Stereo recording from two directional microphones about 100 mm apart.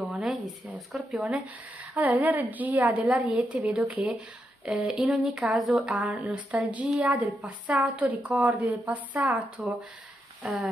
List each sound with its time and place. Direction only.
0.0 s a sound: 15° right (ahead or behind)
0.7 s speech: centre (ahead or behind)
2.0 s a woman's voice: 15° right (ahead or behind)
10.4 s speech: centre (ahead or behind)